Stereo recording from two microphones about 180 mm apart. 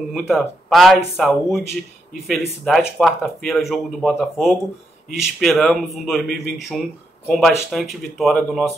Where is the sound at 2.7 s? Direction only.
Centre (ahead or behind).